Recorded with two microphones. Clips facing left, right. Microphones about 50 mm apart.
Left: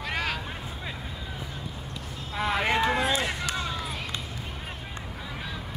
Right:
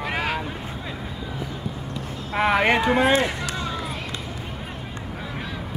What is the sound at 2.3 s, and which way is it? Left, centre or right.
Speech, right.